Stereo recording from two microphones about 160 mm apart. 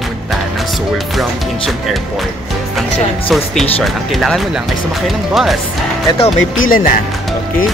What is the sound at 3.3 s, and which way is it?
Speech, centre (ahead or behind).